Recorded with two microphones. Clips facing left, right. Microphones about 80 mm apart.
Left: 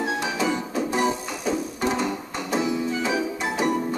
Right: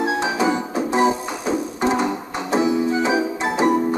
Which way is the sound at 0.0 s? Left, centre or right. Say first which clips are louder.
Right 5 dB; right.